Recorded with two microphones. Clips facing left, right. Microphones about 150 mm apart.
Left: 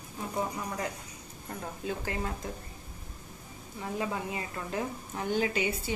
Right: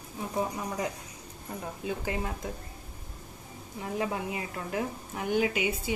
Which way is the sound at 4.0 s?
20° right (ahead or behind).